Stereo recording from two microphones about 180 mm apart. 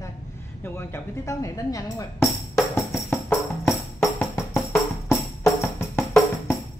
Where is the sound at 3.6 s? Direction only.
Centre (ahead or behind).